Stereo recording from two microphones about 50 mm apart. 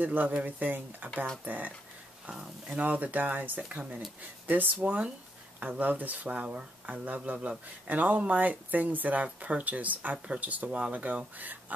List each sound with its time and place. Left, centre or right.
0.0 s speech: right
1.1 s speech: centre
1.4 s speech: right
2.2 s speech: centre
2.8 s speech: right
10.2 s speech: right